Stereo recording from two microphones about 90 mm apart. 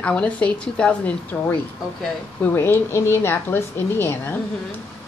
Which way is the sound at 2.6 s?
30° left (ahead or behind).